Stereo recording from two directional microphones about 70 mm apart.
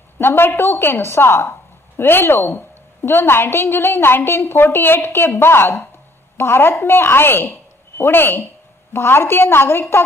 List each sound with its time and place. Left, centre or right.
0.2 s a woman's voice: left